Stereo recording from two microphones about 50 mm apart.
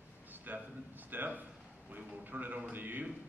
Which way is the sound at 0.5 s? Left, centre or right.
Right.